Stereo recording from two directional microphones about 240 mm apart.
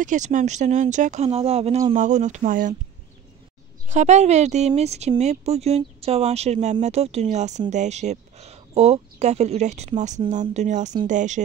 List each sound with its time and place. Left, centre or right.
0.0 s speech: right
3.9 s speech: right